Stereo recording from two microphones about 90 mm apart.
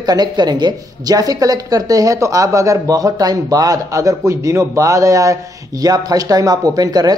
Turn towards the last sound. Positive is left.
turn(degrees=-45)  # may be behind; listen again after turning